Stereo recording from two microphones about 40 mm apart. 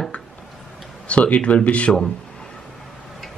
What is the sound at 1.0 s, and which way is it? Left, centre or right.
Speech, left.